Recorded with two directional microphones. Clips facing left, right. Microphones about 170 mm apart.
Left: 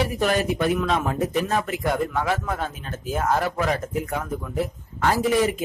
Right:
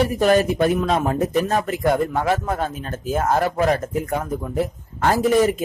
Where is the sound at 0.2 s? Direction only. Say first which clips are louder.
Right 6 dB; 45° right (ahead or behind).